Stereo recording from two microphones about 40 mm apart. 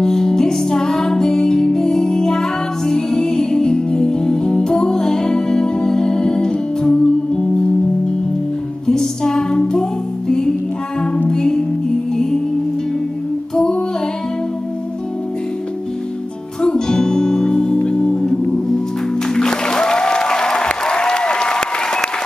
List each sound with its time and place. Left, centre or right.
0.0 s music: centre
8.8 s music: centre
16.6 s music: centre
19.3 s applause: centre